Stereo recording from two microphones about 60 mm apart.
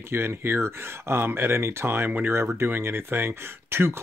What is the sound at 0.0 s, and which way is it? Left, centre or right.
Speech, right.